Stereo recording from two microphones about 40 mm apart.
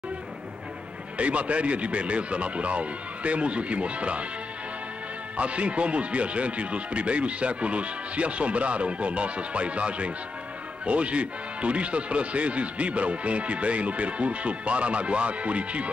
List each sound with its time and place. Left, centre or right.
1.1 s speech: right
5.4 s speech: right